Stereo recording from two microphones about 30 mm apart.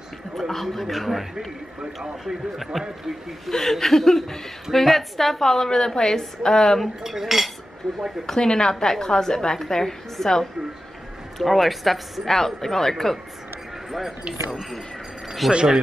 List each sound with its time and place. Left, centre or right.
0.5 s a man's voice: centre
3.5 s a woman's voice: centre
7.0 s cutlery: centre
7.8 s speech: left
8.4 s a woman's voice: left
11.3 s a man's voice: centre
15.4 s a man's voice: centre